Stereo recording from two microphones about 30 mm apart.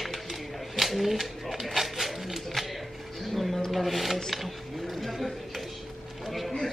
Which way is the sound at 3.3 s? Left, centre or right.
Centre.